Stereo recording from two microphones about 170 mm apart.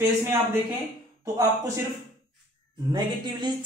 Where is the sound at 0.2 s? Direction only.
15° right (ahead or behind).